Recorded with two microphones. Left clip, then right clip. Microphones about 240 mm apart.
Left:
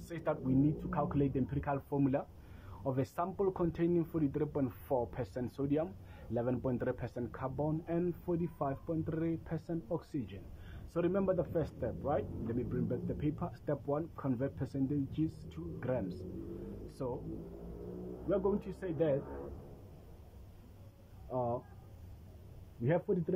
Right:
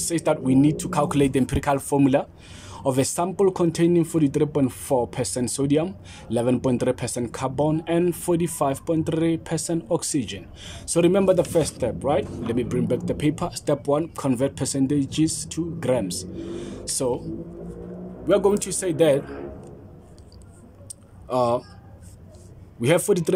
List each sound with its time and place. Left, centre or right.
0.1 s speech: centre
0.8 s speech: right
2.8 s speech: centre
18.3 s speech: right
21.3 s speech: right
22.8 s speech: right